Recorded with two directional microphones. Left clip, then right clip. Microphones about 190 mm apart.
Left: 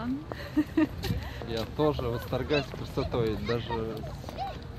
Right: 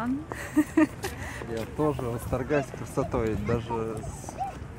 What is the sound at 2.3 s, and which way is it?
Speech, 45° right (ahead or behind).